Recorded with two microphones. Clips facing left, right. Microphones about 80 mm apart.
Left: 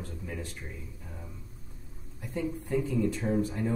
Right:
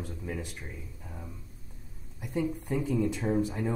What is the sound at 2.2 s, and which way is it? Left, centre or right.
Speech, centre.